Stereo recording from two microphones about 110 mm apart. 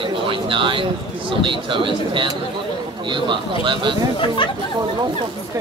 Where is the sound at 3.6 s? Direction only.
45° right (ahead or behind).